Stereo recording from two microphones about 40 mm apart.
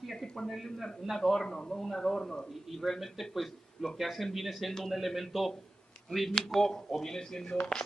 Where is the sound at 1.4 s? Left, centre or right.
Centre.